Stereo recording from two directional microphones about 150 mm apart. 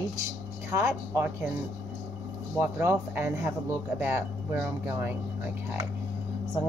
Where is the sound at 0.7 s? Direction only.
20° right (ahead or behind).